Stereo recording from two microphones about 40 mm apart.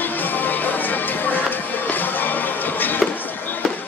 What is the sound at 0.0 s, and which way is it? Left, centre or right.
Music, left.